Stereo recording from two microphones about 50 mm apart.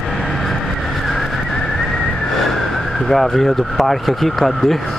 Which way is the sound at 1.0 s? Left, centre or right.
Centre.